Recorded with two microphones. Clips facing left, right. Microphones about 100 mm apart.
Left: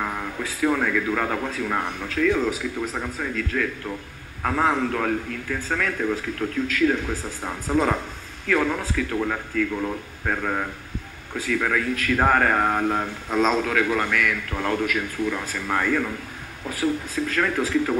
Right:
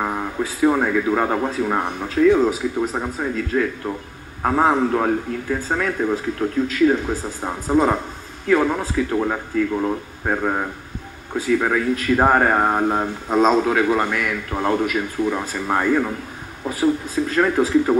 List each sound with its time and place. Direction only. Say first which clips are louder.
0.0 s a man's voice: right 5 dB; 25° right (ahead or behind)